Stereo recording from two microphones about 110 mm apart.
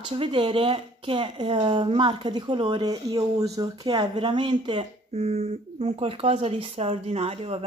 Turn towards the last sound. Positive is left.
turn(degrees=-65)  # may be behind; listen again after turning